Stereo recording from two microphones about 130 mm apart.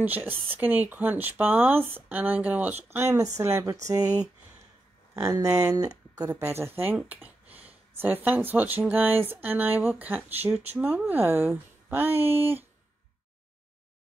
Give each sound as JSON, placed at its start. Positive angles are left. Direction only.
{"t": 0.0, "sound": "speech", "side_deg": -15}